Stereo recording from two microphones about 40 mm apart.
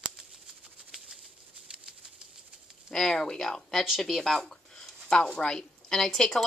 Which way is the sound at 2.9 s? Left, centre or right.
Centre.